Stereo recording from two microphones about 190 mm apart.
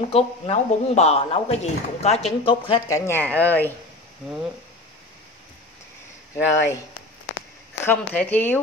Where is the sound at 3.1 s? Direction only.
10° left (ahead or behind).